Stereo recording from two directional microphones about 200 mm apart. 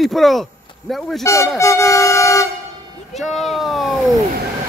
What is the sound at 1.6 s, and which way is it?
Vehicle, 15° left (ahead or behind).